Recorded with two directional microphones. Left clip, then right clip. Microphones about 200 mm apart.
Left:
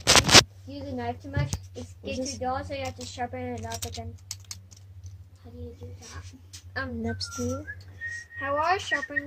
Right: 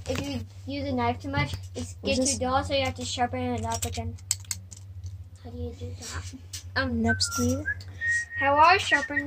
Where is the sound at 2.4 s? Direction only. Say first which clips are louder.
Right 3 dB; 10° right (ahead or behind).